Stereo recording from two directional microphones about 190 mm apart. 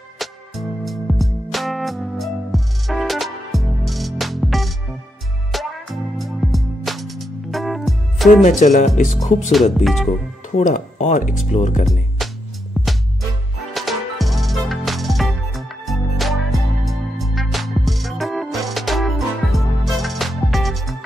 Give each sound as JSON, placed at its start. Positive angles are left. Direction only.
{"t": 0.2, "sound": "music", "side_deg": 0}
{"t": 8.5, "sound": "speech", "side_deg": 40}
{"t": 9.5, "sound": "speech", "side_deg": 0}
{"t": 10.5, "sound": "speech", "side_deg": 40}
{"t": 12.2, "sound": "music", "side_deg": 0}